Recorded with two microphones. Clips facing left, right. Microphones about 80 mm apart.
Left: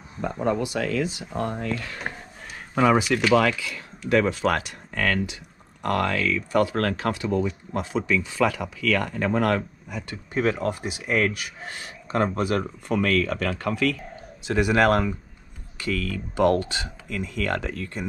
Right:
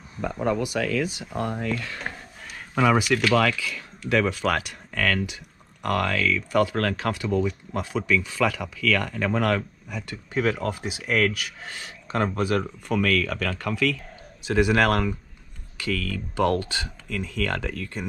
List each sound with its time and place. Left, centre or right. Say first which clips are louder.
0.2 s speech: even; left
1.8 s speech: even; centre
2.7 s speech: left 1 dB; left
9.9 s speech: even; centre
13.1 s speech: left 1 dB; left
14.5 s speech: left 1 dB; centre